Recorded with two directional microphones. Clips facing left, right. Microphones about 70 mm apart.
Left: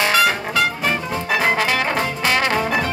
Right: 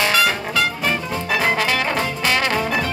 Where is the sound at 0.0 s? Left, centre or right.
Centre.